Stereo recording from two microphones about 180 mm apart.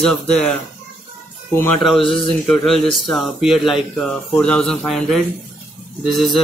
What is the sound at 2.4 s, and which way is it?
A man's voice, 5° left (ahead or behind).